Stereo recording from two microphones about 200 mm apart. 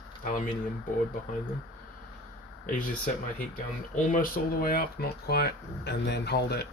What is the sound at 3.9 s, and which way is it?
Speech, 40° left (ahead or behind).